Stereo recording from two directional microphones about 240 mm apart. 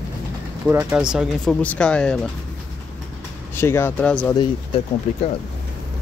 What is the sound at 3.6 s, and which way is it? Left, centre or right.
Speech, centre.